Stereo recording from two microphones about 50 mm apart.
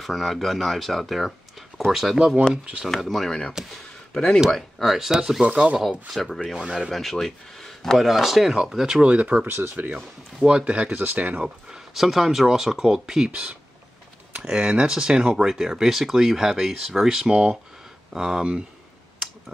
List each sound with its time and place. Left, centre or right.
0.0 s speech: centre
2.5 s speech: right
3.0 s speech: centre
3.3 s speech: centre
4.5 s speech: centre
5.4 s speech: right
5.8 s speech: centre
6.1 s speech: centre
8.1 s speech: centre; by 9.5 s right
9.5 s speech: right
10.6 s speech: right
10.9 s speech: right
11.9 s speech: centre